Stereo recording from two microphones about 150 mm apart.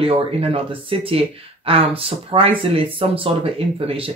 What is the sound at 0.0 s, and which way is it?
Speech, 40° right (ahead or behind).